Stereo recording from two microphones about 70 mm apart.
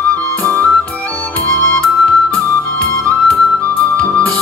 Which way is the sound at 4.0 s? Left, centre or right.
Centre.